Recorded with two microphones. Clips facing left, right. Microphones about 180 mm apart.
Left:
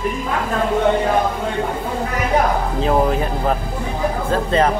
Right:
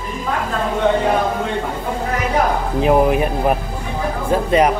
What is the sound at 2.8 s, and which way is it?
Speech, 15° right (ahead or behind).